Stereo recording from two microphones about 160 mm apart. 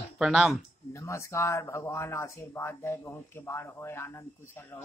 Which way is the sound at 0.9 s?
15° left (ahead or behind).